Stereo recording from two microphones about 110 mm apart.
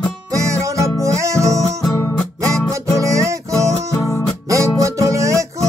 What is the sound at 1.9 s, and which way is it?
Music, 20° left (ahead or behind).